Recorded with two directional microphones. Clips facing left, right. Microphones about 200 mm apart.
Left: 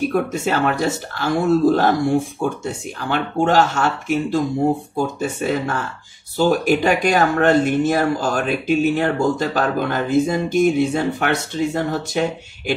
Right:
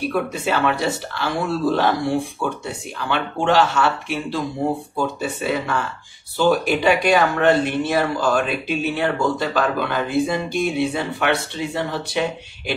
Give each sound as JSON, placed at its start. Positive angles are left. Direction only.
{"t": 0.0, "sound": "speech", "side_deg": 45}